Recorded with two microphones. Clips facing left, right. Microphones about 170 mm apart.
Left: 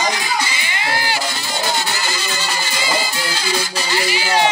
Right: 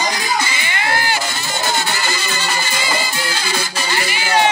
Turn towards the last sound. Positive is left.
turn(degrees=-55)  # may be behind; listen again after turning